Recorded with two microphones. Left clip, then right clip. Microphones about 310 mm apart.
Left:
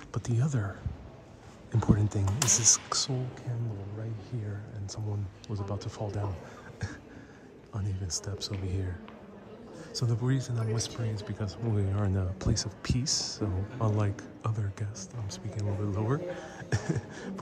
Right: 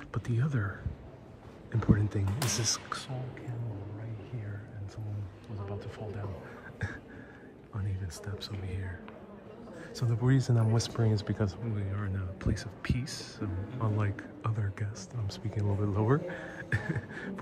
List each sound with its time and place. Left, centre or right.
0.1 s speech: centre
5.8 s speech: centre
7.7 s speech: centre
9.9 s speech: centre
11.9 s speech: centre